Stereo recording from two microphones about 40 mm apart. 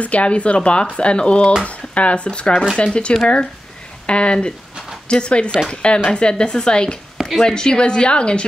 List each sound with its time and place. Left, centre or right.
0.0 s speech: left